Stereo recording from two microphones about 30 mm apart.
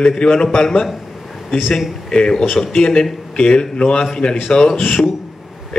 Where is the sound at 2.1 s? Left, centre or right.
Left.